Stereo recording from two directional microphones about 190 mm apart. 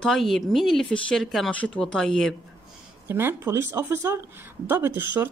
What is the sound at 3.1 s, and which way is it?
A woman's voice, 10° right (ahead or behind).